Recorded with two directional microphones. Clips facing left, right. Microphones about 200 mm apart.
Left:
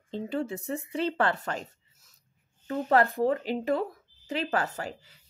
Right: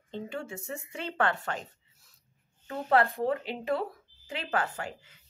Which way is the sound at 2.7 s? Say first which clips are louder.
Left 2 dB; 40° left (ahead or behind).